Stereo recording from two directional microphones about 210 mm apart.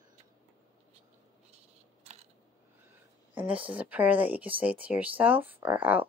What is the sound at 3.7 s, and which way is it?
Speech, 5° right (ahead or behind).